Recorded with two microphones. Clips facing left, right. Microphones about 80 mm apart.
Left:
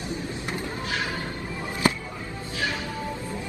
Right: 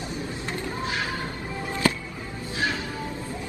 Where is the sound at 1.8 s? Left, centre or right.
Left.